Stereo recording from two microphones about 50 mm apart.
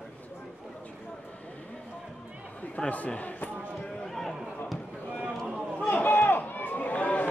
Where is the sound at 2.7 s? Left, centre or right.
Left.